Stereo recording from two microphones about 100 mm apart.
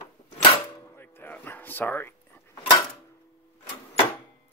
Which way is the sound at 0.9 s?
20° left (ahead or behind).